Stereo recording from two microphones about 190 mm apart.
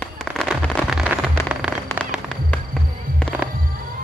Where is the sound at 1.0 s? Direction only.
5° right (ahead or behind).